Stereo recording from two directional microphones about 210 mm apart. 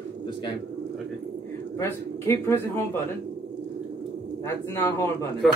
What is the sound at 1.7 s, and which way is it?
A man's voice, 10° left (ahead or behind).